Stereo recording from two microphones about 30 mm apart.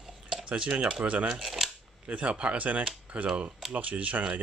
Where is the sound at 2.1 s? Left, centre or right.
Right.